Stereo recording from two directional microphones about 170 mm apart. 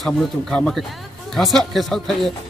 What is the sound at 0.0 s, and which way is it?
Speech, centre (ahead or behind).